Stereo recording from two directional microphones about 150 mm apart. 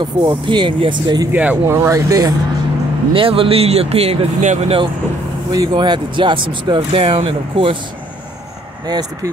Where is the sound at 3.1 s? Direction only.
35° right (ahead or behind).